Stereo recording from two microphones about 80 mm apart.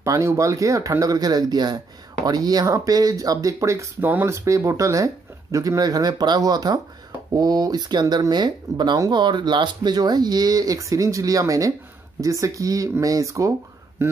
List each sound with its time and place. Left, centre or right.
0.0 s speech: right
4.0 s speech: right
4.5 s speech: right
9.1 s speech: right